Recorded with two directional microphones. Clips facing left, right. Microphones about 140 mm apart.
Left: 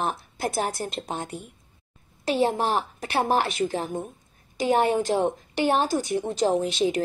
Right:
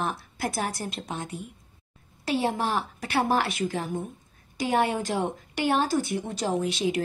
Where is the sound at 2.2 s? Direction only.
25° left (ahead or behind).